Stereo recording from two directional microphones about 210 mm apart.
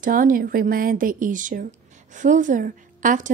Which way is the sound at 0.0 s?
40° right (ahead or behind).